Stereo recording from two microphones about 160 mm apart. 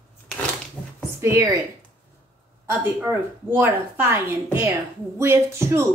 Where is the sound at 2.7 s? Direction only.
15° right (ahead or behind).